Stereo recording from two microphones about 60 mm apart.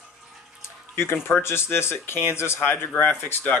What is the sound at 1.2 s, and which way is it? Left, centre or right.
Speech, left.